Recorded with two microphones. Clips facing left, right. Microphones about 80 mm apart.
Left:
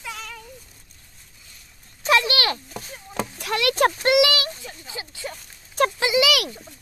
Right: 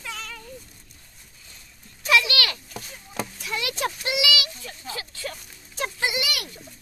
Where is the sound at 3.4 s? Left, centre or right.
Left.